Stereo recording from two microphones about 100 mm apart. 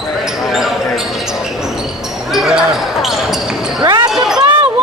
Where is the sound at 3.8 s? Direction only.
40° right (ahead or behind).